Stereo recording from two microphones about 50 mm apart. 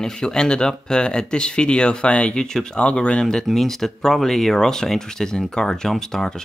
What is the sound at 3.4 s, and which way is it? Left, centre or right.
Speech, centre.